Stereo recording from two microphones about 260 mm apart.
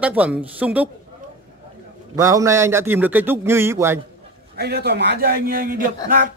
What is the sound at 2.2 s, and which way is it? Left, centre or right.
A man's voice, centre.